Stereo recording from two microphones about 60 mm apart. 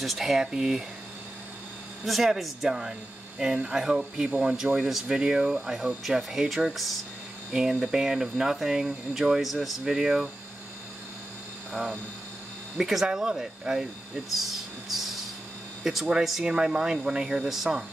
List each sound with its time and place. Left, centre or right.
0.0 s speech: centre
2.0 s speech: centre
4.7 s speech: centre
12.7 s speech: centre
14.3 s a sound: centre
15.8 s speech: centre